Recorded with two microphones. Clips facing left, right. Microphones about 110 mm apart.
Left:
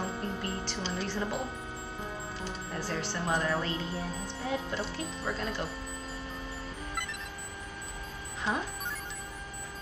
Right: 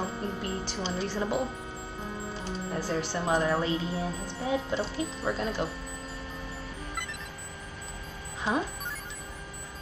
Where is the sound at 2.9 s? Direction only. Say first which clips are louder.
Right 4 dB; 15° right (ahead or behind).